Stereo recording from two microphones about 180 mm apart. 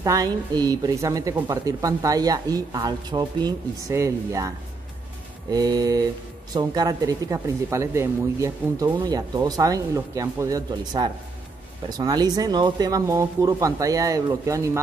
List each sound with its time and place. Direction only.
0.0 s speech: 20° right (ahead or behind)